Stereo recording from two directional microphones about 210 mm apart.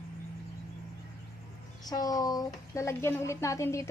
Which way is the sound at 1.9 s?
20° left (ahead or behind).